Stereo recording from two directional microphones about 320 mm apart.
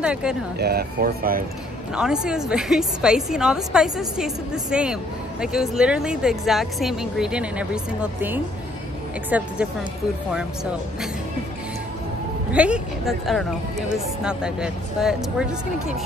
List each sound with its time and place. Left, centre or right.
0.0 s speech: centre
0.6 s speech: right
2.0 s a woman's voice: centre
12.5 s a woman's voice: centre